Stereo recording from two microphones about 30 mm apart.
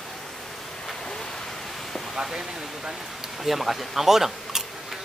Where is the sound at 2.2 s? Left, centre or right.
Centre.